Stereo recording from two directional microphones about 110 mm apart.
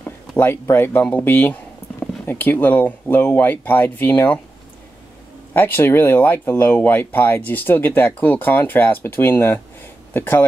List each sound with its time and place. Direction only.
0.4 s speech: 20° left (ahead or behind)
5.5 s speech: 20° left (ahead or behind)